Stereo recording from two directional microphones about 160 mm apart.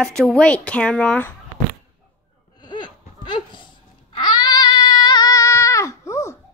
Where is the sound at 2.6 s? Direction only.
30° left (ahead or behind).